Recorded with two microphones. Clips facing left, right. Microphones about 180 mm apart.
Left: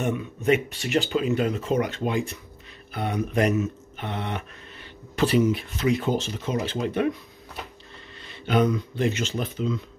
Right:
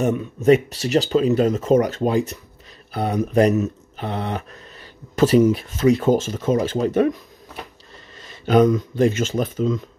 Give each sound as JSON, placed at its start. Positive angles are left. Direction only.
{"t": 0.0, "sound": "speech", "side_deg": -40}
{"t": 8.2, "sound": "speech", "side_deg": -40}